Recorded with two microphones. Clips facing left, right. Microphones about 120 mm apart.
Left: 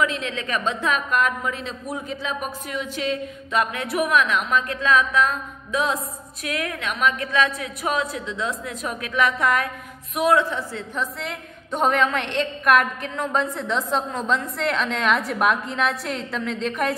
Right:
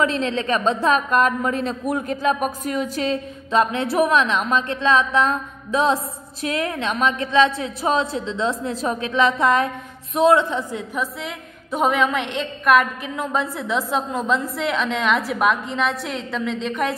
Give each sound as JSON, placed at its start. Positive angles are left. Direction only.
{"t": 0.0, "sound": "a woman's voice", "side_deg": -35}
{"t": 3.5, "sound": "a woman's voice", "side_deg": -30}
{"t": 11.0, "sound": "a woman's voice", "side_deg": 0}